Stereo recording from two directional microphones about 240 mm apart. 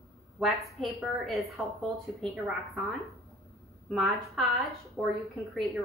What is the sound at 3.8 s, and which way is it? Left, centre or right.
Speech, centre.